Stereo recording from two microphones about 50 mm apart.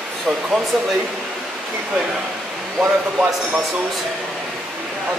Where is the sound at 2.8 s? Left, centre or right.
Right.